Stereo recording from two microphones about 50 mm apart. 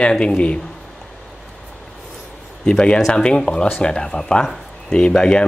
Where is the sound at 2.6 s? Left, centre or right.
Centre.